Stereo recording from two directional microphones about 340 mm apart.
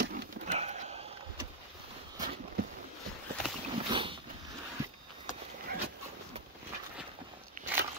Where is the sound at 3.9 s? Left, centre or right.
Centre.